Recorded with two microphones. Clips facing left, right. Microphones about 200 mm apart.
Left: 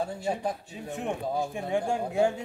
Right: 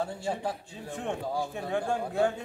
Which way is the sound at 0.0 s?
15° left (ahead or behind).